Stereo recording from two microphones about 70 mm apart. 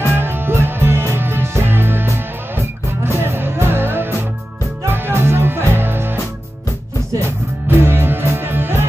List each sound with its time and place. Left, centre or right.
0.1 s music: right
7.6 s music: right